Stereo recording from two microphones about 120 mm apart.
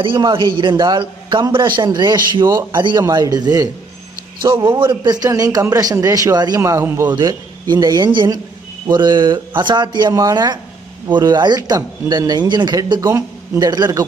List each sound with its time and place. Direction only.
0.0 s a man's voice: 45° right (ahead or behind); by 7.2 s 20° right (ahead or behind)
7.7 s a man's voice: 35° right (ahead or behind)